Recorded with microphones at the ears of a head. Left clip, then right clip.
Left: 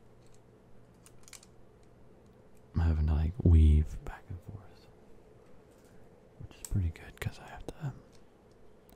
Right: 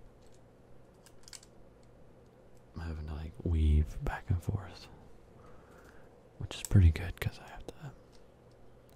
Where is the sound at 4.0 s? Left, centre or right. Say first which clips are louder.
Right 8 dB; right.